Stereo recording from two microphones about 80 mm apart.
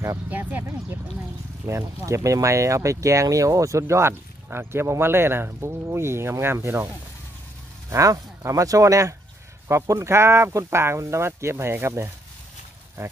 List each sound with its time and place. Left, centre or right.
0.3 s speech: right
7.9 s speech: right